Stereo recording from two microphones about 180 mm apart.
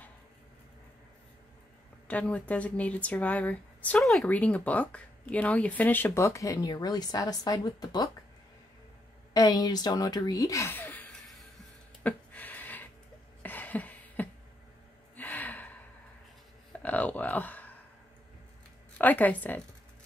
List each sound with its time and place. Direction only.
2.0 s speech: 10° left (ahead or behind)
9.3 s speech: 20° left (ahead or behind); by 11.4 s 5° left (ahead or behind)
12.0 s a sound: 10° left (ahead or behind)
13.4 s cough: 10° left (ahead or behind)
15.1 s gasp: 10° left (ahead or behind)
16.8 s speech: 10° left (ahead or behind)
18.9 s speech: 10° left (ahead or behind)